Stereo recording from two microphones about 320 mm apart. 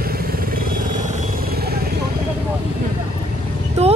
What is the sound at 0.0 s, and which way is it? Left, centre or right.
Vehicle, right.